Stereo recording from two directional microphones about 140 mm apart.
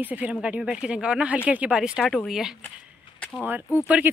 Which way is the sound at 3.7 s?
10° right (ahead or behind).